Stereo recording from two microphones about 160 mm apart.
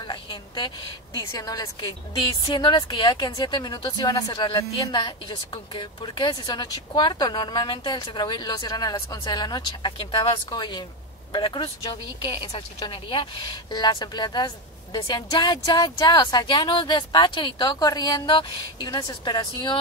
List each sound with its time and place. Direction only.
0.0 s a woman's voice: 30° left (ahead or behind)